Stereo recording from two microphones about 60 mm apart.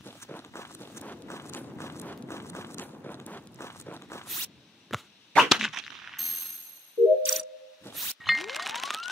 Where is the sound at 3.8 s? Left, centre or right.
Left.